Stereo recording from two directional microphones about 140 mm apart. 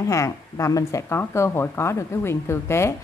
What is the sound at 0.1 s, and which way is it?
A woman's voice, 20° left (ahead or behind).